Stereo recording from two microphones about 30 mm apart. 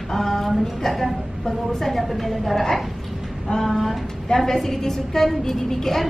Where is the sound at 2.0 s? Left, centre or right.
Centre.